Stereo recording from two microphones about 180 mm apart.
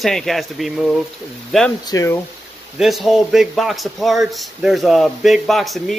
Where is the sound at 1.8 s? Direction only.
20° left (ahead or behind).